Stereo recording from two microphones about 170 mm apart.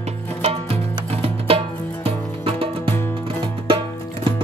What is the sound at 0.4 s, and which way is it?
Music, 35° right (ahead or behind).